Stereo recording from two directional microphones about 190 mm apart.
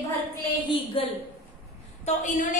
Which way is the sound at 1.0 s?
30° left (ahead or behind).